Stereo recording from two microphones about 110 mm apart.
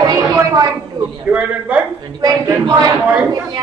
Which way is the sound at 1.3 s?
10° right (ahead or behind).